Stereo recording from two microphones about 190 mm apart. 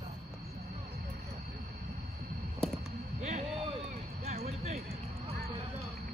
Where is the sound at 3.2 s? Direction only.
35° right (ahead or behind).